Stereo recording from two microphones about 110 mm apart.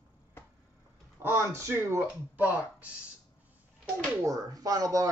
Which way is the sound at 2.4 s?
15° right (ahead or behind).